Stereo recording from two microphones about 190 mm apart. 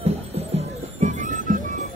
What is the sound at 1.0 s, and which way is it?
Music, 40° right (ahead or behind).